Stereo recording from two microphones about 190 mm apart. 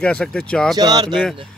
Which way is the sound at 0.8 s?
20° right (ahead or behind).